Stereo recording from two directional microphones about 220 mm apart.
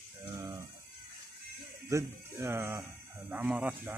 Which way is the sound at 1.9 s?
10° right (ahead or behind).